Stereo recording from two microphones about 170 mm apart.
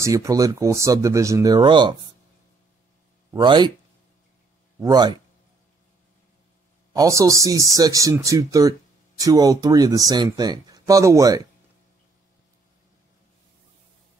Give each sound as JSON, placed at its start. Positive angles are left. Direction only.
{"t": 0.0, "sound": "speech", "side_deg": -20}
{"t": 3.3, "sound": "speech", "side_deg": -25}
{"t": 4.7, "sound": "speech", "side_deg": -25}
{"t": 6.9, "sound": "speech", "side_deg": -20}